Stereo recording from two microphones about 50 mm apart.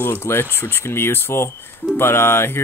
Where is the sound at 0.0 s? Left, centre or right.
Left.